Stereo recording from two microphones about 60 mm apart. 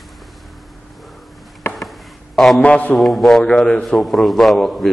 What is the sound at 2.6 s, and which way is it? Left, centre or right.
Speech, left.